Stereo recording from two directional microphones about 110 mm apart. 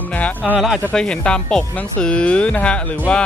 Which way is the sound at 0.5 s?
5° right (ahead or behind).